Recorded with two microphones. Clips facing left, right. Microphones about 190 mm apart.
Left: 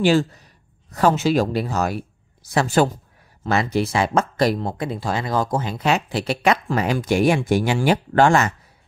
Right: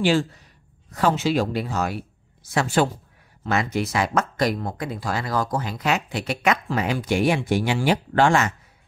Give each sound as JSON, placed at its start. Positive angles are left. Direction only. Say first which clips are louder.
{"t": 0.0, "sound": "speech", "louder": "left 3 dB", "side_deg": 40}